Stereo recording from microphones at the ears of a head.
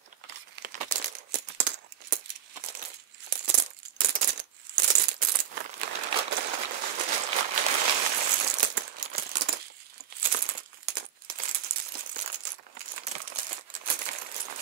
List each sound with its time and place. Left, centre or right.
0.3 s crumpling: right